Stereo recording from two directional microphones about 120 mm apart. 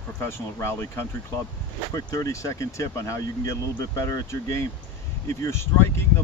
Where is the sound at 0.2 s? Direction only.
20° left (ahead or behind).